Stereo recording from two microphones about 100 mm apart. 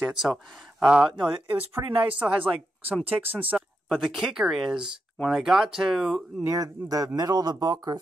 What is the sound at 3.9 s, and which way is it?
A woman's voice, 5° right (ahead or behind).